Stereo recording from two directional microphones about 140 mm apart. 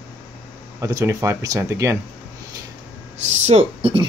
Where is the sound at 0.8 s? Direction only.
25° right (ahead or behind).